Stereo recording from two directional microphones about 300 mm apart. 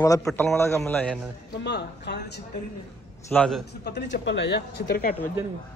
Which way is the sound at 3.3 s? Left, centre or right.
Centre.